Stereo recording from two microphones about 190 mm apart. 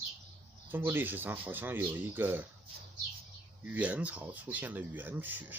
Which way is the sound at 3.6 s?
10° right (ahead or behind).